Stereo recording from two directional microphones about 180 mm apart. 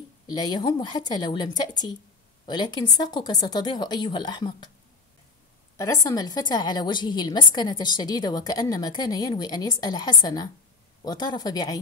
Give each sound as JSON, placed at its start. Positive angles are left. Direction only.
{"t": 0.3, "sound": "a woman's voice", "side_deg": 25}
{"t": 6.0, "sound": "a woman's voice", "side_deg": 20}